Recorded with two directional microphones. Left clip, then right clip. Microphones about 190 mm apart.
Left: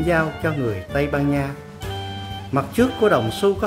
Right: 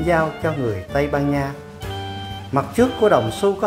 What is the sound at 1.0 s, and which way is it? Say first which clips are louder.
Speech: right 1 dB; 30° left (ahead or behind).